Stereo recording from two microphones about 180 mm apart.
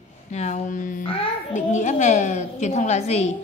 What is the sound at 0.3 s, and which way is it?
A woman's voice, 40° left (ahead or behind).